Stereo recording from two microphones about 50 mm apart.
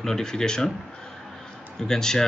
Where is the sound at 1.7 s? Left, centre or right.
Centre.